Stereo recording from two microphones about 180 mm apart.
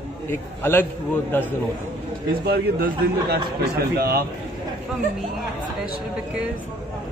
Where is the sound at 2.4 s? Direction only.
60° right (ahead or behind).